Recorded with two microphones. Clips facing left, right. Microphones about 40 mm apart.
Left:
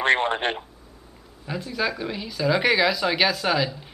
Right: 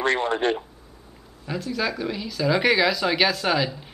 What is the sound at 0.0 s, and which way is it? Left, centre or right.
Speech, left.